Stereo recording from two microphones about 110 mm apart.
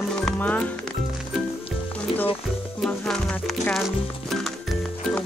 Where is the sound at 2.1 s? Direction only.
60° left (ahead or behind).